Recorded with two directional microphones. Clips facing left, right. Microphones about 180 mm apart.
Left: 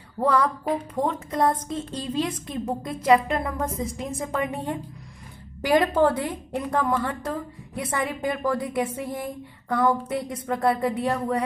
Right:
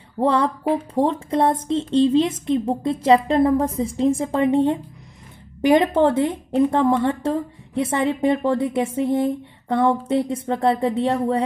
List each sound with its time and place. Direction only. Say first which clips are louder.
0.2 s a woman's voice: right 3 dB; 25° right (ahead or behind)